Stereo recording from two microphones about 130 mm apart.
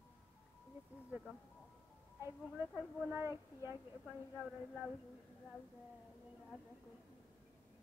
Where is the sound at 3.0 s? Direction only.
20° right (ahead or behind).